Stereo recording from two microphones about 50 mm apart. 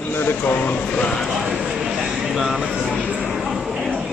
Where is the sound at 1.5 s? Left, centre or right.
Centre.